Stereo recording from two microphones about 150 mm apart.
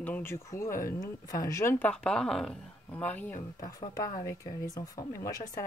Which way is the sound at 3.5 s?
25° left (ahead or behind).